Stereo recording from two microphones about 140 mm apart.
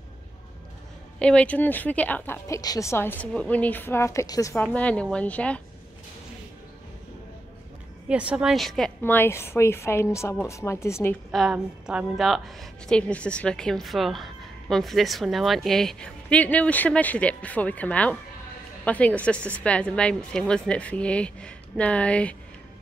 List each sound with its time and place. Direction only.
1.2 s a woman's voice: 10° left (ahead or behind)
4.7 s a woman's voice: 10° left (ahead or behind)
8.1 s a woman's voice: 10° right (ahead or behind)
9.0 s speech: 15° left (ahead or behind)
11.3 s a woman's voice: 5° right (ahead or behind)